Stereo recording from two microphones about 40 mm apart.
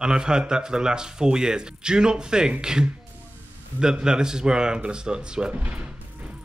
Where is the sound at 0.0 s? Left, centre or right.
Centre.